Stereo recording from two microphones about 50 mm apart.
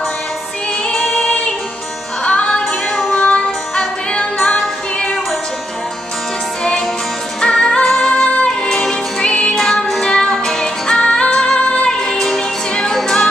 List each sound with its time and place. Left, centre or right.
1.0 s music: centre
2.2 s music: left
2.6 s music: centre
7.3 s music: centre
8.5 s music: centre
9.6 s music: centre; by 11.9 s left
11.9 s music: centre